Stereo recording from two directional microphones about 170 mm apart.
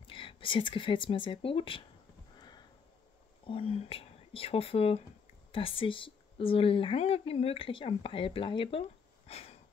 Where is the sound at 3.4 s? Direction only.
35° left (ahead or behind).